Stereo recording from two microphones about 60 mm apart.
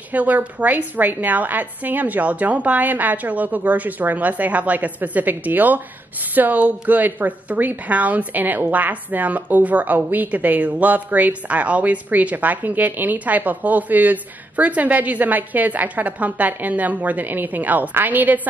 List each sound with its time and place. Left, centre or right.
0.1 s a woman's voice: right